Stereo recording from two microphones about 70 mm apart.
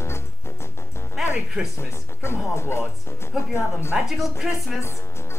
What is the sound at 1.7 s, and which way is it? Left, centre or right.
Speech, left.